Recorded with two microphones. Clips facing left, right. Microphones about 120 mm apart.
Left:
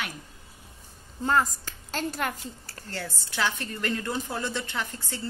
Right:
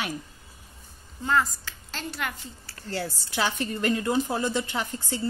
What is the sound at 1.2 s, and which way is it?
A woman's voice, 40° left (ahead or behind).